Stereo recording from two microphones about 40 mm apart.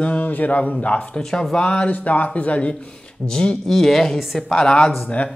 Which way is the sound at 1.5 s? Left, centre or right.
Left.